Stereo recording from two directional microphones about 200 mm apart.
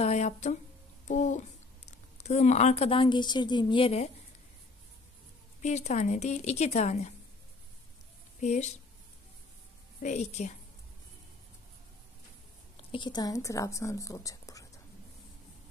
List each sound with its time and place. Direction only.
0.0 s a woman's voice: 35° left (ahead or behind)
5.6 s speech: 35° left (ahead or behind)
8.4 s speech: 35° left (ahead or behind)
10.0 s speech: 35° left (ahead or behind)
12.7 s a woman's voice: 25° left (ahead or behind)